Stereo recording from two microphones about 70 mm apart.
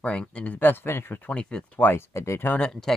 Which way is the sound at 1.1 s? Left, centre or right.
Centre.